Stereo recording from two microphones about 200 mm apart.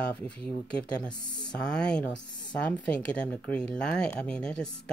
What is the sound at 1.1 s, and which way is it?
Speech, 20° left (ahead or behind).